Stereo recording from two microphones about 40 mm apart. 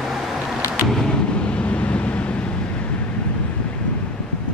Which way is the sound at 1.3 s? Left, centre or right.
Left.